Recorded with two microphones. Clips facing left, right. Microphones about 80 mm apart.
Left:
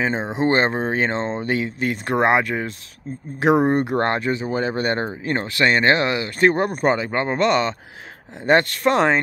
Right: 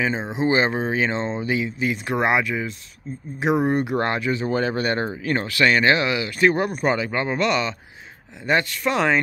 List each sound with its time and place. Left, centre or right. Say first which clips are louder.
0.4 s speech: left 1 dB; left
3.6 s speech: left 2 dB; left
4.4 s speech: even; centre; by 7.7 s left
8.4 s speech: left 5 dB; left